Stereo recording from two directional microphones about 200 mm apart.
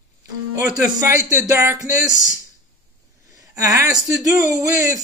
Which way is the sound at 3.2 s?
15° right (ahead or behind).